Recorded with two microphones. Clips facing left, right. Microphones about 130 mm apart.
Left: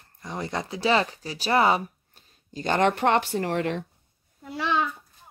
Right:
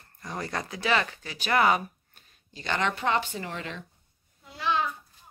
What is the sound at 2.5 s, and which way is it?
Speech, 45° left (ahead or behind).